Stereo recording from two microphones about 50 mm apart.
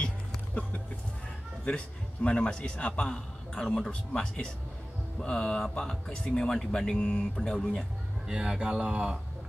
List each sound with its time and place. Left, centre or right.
2.2 s a man's voice: left
3.6 s speech: centre
4.1 s speech: centre
8.3 s speech: centre